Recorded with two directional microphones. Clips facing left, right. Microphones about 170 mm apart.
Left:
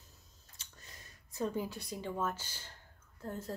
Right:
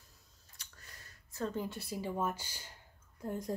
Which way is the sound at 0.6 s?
20° left (ahead or behind).